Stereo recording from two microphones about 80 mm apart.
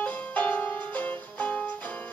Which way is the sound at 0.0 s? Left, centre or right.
Centre.